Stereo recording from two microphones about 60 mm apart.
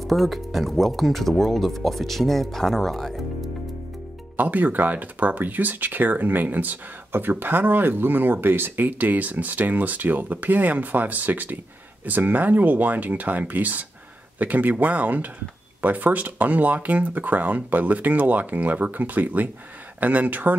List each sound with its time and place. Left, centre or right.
0.0 s speech: centre
4.4 s speech: right